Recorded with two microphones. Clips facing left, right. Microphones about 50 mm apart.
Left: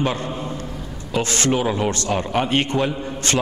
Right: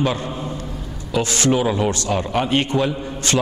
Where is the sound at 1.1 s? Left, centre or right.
Left.